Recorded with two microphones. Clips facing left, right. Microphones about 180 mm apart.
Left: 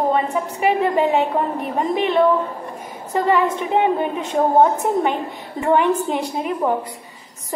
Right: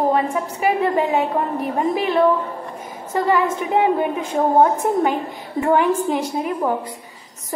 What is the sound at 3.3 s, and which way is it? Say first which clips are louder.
A woman's voice: left 1 dB; 5° right (ahead or behind).